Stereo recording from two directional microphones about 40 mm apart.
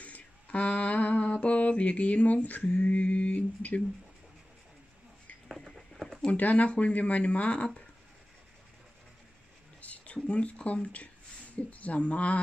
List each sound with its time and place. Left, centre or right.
0.0 s mantra: left
6.3 s speech: left
9.8 s speech: left